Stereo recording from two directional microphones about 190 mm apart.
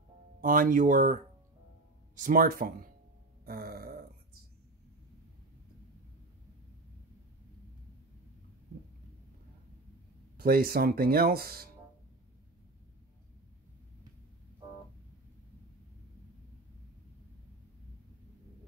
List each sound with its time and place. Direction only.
0.4 s speech: 45° right (ahead or behind)
10.3 s speech: 55° right (ahead or behind)